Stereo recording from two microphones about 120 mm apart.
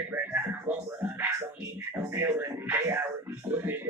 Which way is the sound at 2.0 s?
20° right (ahead or behind).